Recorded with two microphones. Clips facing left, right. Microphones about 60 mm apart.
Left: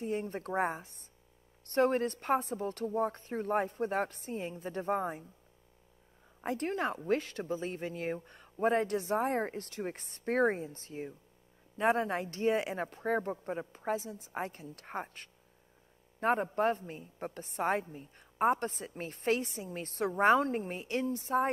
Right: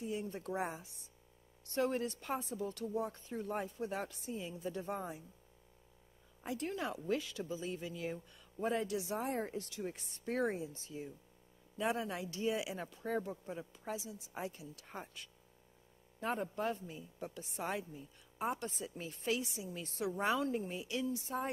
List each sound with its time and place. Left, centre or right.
0.0 s a woman's voice: left
6.4 s a woman's voice: left